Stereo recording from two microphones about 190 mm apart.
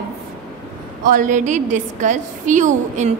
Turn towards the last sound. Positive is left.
turn(degrees=-40)  # may be behind; listen again after turning